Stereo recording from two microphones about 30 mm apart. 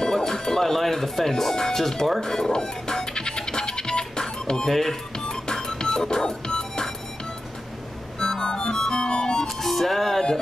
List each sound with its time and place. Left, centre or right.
0.1 s speech: centre
2.5 s music: left
4.6 s speech: centre
5.5 s music: left
8.2 s music: left
9.5 s music: centre